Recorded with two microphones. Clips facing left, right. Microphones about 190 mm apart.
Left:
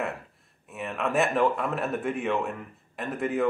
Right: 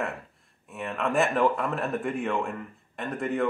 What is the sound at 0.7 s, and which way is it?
Speech, centre (ahead or behind).